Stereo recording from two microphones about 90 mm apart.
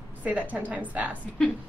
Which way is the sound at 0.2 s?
15° right (ahead or behind).